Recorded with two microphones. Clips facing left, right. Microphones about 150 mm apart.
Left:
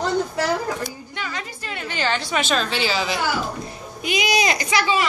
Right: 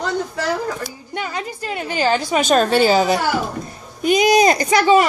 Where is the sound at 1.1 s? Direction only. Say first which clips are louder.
Right 6 dB; 45° right (ahead or behind).